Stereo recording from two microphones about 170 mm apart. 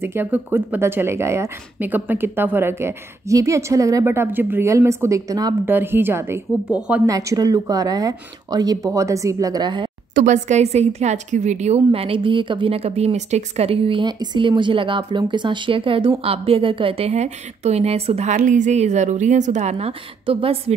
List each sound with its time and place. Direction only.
0.0 s speech: 10° right (ahead or behind)
10.1 s a woman's voice: 45° right (ahead or behind)